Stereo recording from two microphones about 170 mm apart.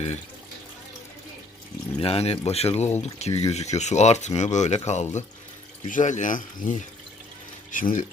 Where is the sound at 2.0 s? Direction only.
35° left (ahead or behind).